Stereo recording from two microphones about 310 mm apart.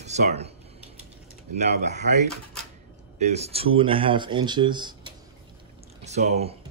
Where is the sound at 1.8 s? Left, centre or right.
Right.